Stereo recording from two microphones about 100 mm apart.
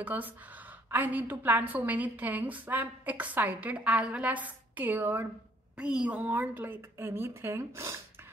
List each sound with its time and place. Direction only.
0.0 s a woman's voice: 15° right (ahead or behind)
5.8 s a woman's voice: 10° right (ahead or behind); by 8.0 s 25° right (ahead or behind)